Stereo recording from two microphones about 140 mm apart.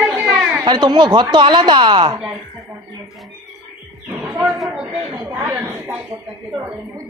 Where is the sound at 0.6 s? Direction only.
30° right (ahead or behind).